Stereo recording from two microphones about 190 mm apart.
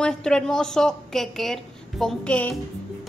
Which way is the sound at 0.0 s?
5° left (ahead or behind).